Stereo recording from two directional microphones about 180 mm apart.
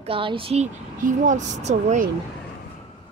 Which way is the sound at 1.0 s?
45° right (ahead or behind).